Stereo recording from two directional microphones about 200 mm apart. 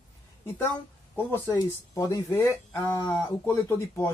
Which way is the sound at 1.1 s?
10° left (ahead or behind).